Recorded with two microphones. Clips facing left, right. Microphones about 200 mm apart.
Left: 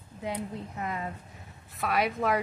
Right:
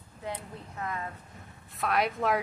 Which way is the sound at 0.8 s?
15° left (ahead or behind).